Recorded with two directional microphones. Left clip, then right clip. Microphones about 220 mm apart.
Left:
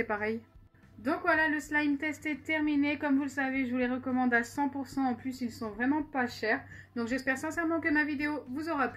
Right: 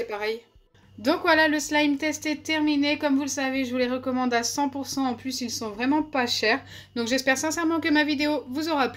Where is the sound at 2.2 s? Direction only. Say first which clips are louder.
Right 6 dB; 15° right (ahead or behind).